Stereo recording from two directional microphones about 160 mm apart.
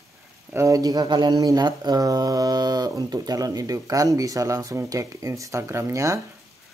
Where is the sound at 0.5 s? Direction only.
20° right (ahead or behind).